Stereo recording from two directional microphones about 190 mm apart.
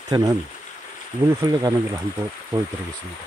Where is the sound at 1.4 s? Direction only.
15° right (ahead or behind).